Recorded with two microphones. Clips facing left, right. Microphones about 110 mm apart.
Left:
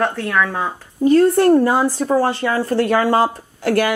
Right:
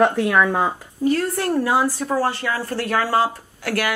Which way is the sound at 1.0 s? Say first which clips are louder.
Left 8 dB; 30° left (ahead or behind).